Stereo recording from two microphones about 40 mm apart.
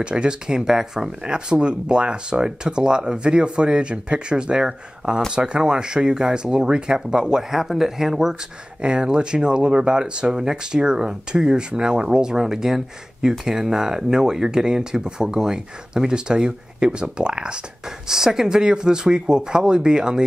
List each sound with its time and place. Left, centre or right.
0.0 s speech: right
8.8 s speech: right
17.8 s speech: centre